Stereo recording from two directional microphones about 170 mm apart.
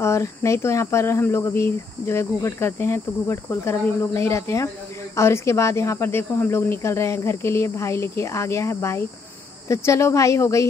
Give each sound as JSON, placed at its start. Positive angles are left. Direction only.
{"t": 0.0, "sound": "speech", "side_deg": 15}